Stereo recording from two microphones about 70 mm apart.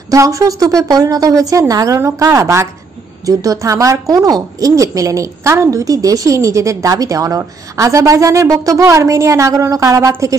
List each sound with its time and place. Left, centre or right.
0.1 s a woman's voice: right